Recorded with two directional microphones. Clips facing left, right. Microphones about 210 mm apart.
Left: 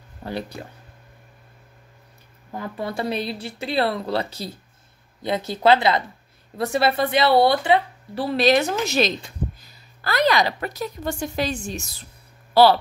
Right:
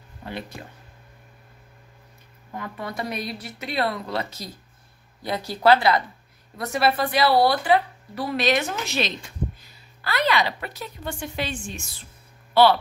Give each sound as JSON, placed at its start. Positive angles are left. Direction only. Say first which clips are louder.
{"t": 0.2, "sound": "speech", "louder": "left 4 dB", "side_deg": 35}
{"t": 2.5, "sound": "a woman's voice", "louder": "left 4 dB", "side_deg": 30}